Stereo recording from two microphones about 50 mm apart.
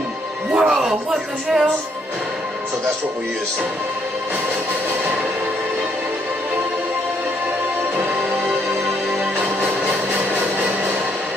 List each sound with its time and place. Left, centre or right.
0.5 s music: centre
1.1 s speech: centre
9.4 s a sound: right